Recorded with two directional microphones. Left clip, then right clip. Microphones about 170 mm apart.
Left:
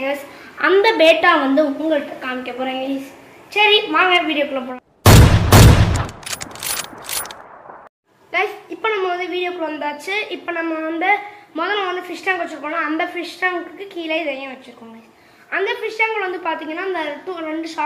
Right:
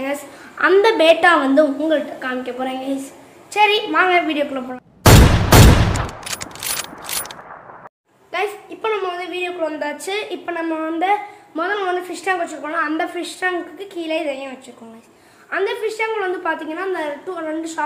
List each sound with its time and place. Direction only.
0.0 s a woman's voice: 20° right (ahead or behind)
3.5 s a sound: 15° right (ahead or behind)
8.3 s a woman's voice: 15° right (ahead or behind)
9.8 s a woman's voice: 25° right (ahead or behind)
10.4 s a woman's voice: 5° right (ahead or behind)